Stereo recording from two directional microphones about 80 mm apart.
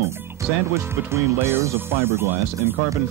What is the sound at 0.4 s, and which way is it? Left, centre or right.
Speech, right.